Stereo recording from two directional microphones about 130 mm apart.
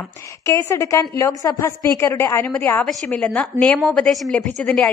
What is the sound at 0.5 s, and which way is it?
A woman's voice, 20° left (ahead or behind).